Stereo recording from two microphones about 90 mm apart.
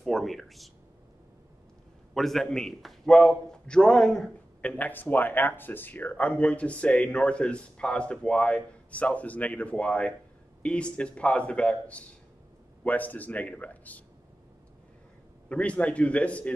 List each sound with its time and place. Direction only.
0.0 s a sound: centre (ahead or behind)
2.1 s a man's voice: 5° left (ahead or behind)
15.4 s a man's voice: 15° left (ahead or behind)